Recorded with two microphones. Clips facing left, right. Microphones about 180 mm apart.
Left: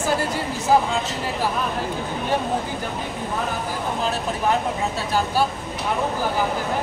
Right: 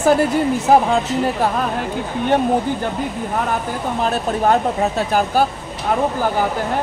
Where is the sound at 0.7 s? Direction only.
60° right (ahead or behind).